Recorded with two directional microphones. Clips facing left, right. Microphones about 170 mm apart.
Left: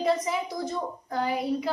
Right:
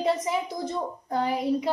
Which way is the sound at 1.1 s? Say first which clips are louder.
Right 2 dB; 25° right (ahead or behind).